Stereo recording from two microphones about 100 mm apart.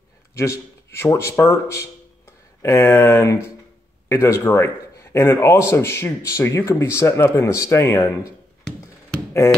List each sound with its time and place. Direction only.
0.4 s speech: 30° left (ahead or behind)